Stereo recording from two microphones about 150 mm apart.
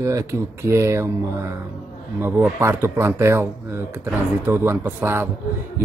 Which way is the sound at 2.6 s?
15° right (ahead or behind).